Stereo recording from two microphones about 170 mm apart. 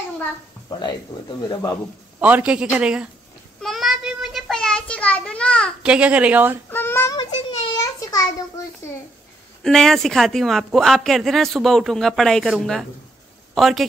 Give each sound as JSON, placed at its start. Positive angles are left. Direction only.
{"t": 0.7, "sound": "speech", "side_deg": 25}
{"t": 2.1, "sound": "a man's voice", "side_deg": -10}
{"t": 3.6, "sound": "child singing", "side_deg": 0}
{"t": 5.8, "sound": "a man's voice", "side_deg": -5}
{"t": 6.7, "sound": "a sound", "side_deg": 10}
{"t": 7.2, "sound": "a sound", "side_deg": 25}
{"t": 9.6, "sound": "speech", "side_deg": 5}